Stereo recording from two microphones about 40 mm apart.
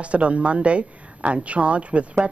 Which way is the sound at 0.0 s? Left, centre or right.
Right.